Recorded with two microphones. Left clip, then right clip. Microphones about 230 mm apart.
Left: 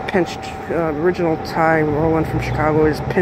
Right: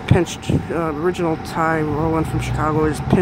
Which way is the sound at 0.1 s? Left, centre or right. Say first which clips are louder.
Right 1 dB; centre.